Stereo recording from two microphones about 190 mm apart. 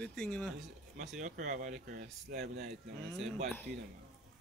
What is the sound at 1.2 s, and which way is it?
Speech, 40° right (ahead or behind).